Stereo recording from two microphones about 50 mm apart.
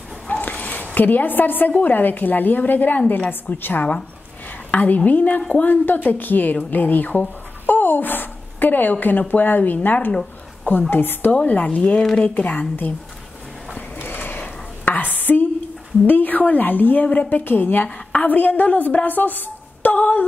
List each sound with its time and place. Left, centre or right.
0.3 s dog: left
1.8 s a woman's voice: left
11.4 s speech: left
12.4 s a woman's voice: left
14.0 s a sound: left
16.1 s a woman's voice: left
17.4 s a woman's voice: left